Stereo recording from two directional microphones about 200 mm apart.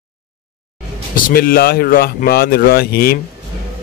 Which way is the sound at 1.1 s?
45° left (ahead or behind).